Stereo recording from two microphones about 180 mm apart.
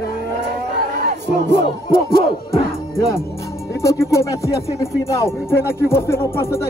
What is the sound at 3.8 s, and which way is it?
Music, 15° left (ahead or behind).